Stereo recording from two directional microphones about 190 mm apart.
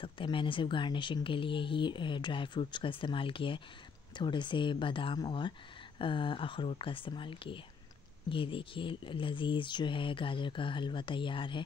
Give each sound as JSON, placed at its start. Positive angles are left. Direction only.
{"t": 0.0, "sound": "speech", "side_deg": 25}